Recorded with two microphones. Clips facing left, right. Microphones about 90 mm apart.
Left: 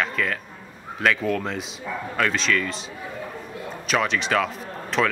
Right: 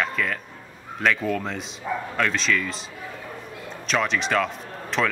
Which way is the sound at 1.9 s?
20° right (ahead or behind).